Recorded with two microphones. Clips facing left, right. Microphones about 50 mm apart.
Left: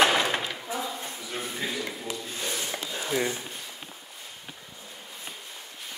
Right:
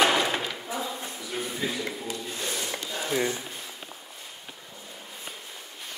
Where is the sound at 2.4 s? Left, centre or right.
Centre.